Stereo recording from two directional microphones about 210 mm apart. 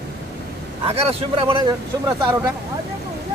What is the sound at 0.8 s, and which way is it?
Speech, 30° right (ahead or behind).